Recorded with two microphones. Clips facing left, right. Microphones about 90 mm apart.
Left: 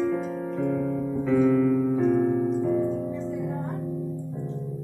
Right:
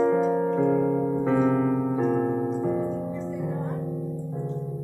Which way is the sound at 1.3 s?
40° right (ahead or behind).